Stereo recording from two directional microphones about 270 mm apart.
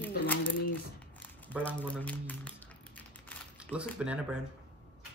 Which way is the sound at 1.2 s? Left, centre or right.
Centre.